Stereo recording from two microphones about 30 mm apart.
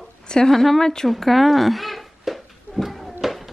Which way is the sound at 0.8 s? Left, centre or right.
Centre.